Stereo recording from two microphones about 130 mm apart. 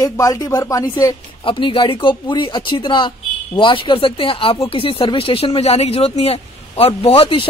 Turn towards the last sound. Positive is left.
turn(degrees=45)  # may be behind; listen again after turning